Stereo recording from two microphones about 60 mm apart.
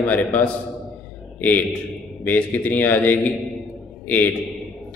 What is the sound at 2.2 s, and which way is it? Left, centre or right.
A man's voice, left.